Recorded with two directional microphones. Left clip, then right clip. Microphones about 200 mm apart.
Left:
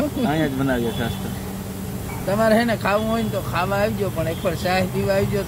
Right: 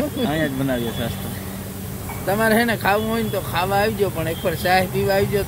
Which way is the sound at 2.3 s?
20° right (ahead or behind).